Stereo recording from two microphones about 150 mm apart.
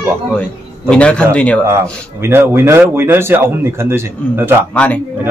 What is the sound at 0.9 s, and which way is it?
Speech, 5° left (ahead or behind).